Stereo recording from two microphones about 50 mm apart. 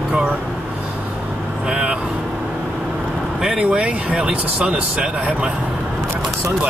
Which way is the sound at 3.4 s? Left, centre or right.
Right.